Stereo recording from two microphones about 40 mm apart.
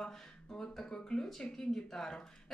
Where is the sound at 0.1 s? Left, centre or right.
Centre.